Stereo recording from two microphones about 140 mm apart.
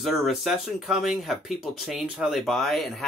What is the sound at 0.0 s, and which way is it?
Speech, centre (ahead or behind).